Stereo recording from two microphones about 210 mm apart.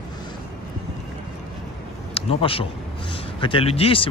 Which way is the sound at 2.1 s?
25° left (ahead or behind).